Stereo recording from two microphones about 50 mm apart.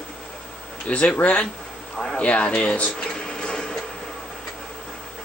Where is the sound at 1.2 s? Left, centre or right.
Left.